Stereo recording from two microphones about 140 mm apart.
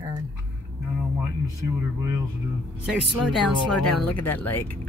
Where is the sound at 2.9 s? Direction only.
Centre (ahead or behind).